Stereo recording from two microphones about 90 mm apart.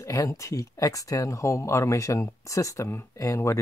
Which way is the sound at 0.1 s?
35° left (ahead or behind).